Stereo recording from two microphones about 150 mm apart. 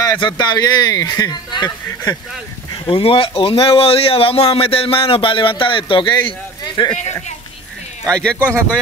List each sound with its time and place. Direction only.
0.2 s a man's voice: 30° left (ahead or behind)
7.0 s speech: 50° left (ahead or behind)
8.0 s speech: 5° left (ahead or behind)